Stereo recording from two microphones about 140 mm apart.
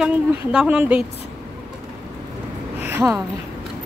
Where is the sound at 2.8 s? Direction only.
15° right (ahead or behind).